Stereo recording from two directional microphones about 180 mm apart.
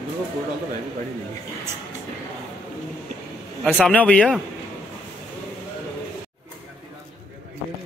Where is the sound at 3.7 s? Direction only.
5° left (ahead or behind).